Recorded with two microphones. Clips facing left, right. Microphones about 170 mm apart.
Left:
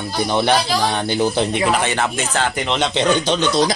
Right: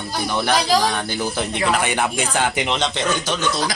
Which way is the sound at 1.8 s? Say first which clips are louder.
Left 1 dB; 10° right (ahead or behind).